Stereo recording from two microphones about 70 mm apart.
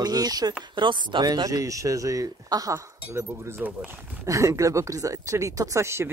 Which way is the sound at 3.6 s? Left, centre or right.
Right.